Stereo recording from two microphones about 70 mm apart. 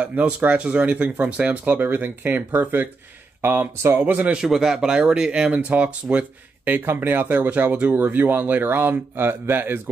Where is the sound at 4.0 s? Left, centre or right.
Right.